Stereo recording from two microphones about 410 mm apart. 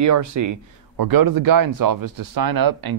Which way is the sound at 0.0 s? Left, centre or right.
Right.